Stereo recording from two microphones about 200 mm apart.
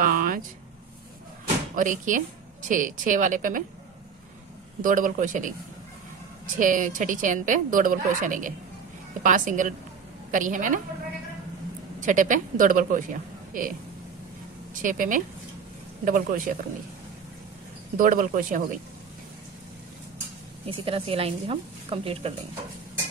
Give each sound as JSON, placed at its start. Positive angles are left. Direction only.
{"t": 0.0, "sound": "a sound", "side_deg": -45}
{"t": 1.8, "sound": "a woman's voice", "side_deg": -40}
{"t": 4.8, "sound": "a woman's voice", "side_deg": -40}
{"t": 12.0, "sound": "a woman's voice", "side_deg": -40}
{"t": 17.9, "sound": "speech", "side_deg": -45}
{"t": 20.7, "sound": "a woman's voice", "side_deg": -30}